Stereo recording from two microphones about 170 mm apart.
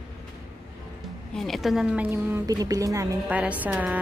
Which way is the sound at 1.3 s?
Centre (ahead or behind).